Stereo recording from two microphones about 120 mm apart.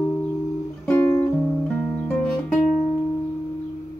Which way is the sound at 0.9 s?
15° left (ahead or behind).